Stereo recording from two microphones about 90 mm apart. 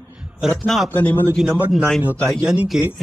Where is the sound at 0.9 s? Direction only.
20° left (ahead or behind).